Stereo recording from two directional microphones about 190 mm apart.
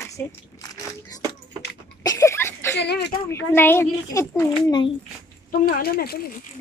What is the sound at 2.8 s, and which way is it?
Speech, 60° left (ahead or behind).